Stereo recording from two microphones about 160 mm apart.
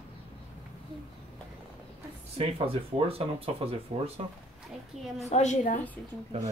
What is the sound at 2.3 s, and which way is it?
Speech, 35° right (ahead or behind).